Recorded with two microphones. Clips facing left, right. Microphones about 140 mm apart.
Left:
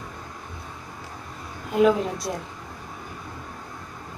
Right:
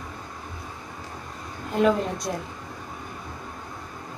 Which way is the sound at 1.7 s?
5° left (ahead or behind).